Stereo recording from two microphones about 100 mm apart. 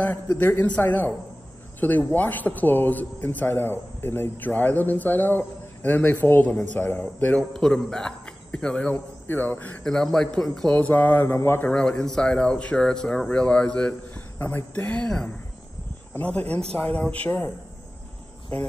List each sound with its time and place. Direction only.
0.0 s a man's voice: 20° left (ahead or behind)
7.5 s speech: 5° left (ahead or behind)
8.9 s a man's voice: 20° left (ahead or behind)
9.8 s a man's voice: 5° left (ahead or behind)
10.8 s a man's voice: 15° left (ahead or behind)
11.7 s speech: 10° left (ahead or behind)